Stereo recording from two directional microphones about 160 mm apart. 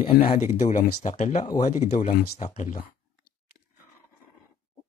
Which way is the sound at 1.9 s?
45° left (ahead or behind).